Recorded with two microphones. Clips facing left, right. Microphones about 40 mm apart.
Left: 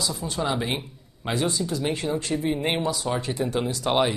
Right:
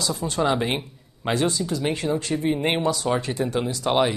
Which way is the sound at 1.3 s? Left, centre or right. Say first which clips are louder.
Right 2 dB; centre.